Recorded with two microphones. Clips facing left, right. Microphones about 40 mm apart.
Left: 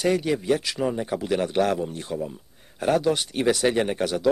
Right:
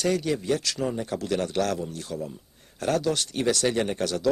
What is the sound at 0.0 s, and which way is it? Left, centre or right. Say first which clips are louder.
Speech: left 2 dB; centre.